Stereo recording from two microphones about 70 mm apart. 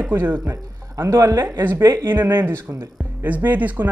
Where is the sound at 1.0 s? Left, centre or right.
Right.